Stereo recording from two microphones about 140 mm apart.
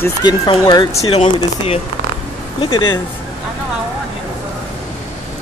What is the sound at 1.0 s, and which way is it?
Speech, 40° left (ahead or behind).